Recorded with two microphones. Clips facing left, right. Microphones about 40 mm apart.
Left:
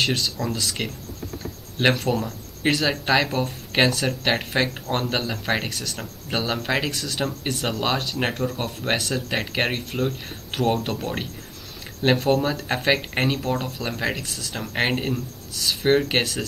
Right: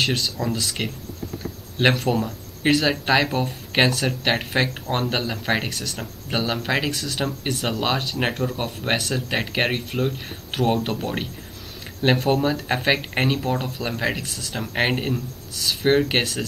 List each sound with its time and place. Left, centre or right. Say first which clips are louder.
0.0 s speech: even; centre